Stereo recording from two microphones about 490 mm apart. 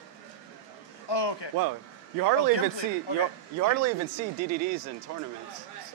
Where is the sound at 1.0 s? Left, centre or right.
Left.